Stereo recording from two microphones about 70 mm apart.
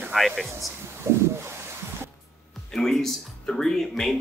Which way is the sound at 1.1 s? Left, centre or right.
Right.